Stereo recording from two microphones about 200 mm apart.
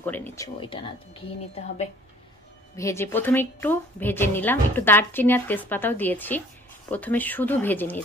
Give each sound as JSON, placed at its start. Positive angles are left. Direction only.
{"t": 0.0, "sound": "a woman's voice", "side_deg": 10}
{"t": 0.6, "sound": "speech", "side_deg": 25}
{"t": 2.7, "sound": "a woman's voice", "side_deg": 15}